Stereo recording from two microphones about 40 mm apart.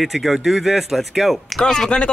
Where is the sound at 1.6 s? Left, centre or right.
Centre.